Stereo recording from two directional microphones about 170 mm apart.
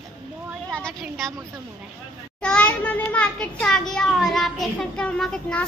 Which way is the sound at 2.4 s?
5° left (ahead or behind).